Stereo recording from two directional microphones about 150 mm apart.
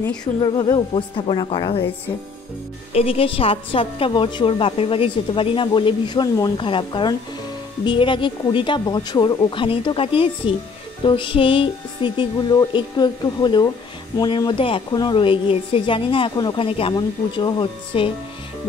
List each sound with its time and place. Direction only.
0.2 s a woman's voice: 25° left (ahead or behind)
2.9 s a woman's voice: 40° left (ahead or behind)